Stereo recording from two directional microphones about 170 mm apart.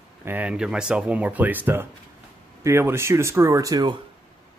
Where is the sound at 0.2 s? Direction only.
10° right (ahead or behind).